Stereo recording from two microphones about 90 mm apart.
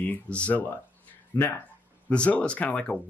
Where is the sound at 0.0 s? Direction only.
15° left (ahead or behind).